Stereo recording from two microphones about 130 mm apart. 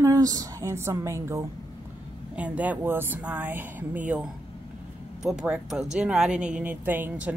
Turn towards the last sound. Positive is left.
turn(degrees=-10)  # may be behind; listen again after turning